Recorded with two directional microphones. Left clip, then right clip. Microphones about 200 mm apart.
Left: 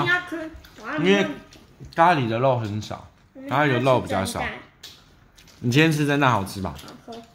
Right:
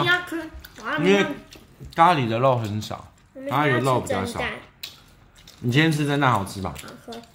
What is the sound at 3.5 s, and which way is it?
Speech, 20° left (ahead or behind).